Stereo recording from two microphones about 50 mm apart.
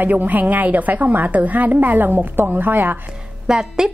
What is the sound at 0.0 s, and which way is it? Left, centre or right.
A woman's voice, right.